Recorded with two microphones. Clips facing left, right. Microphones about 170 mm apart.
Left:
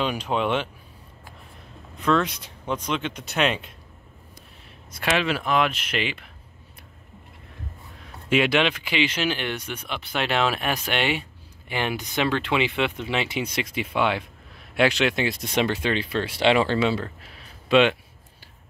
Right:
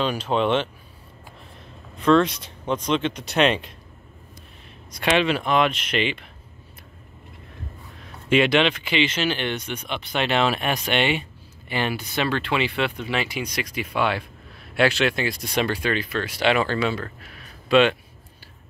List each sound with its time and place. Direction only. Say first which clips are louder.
0.0 s speech: right 2 dB; 15° left (ahead or behind)
2.0 s speech: right 5 dB; 10° left (ahead or behind)
4.9 s speech: right 3 dB; 5° left (ahead or behind)
8.3 s speech: right 2 dB; 10° left (ahead or behind)
11.7 s speech: right 1 dB; 15° left (ahead or behind)